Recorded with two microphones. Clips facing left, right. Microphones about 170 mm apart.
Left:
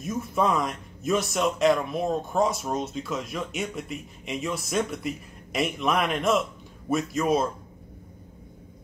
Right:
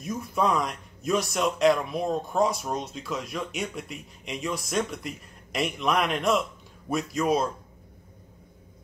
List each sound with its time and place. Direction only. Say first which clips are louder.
0.0 s speech: left 1 dB; centre (ahead or behind)